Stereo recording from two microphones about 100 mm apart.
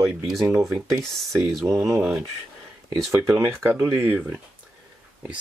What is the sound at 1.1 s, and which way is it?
Speech, centre (ahead or behind).